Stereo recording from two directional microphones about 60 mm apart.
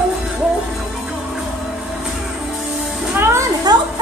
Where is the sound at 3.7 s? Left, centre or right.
Right.